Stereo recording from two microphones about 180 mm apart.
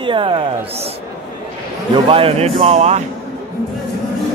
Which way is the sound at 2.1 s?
30° right (ahead or behind).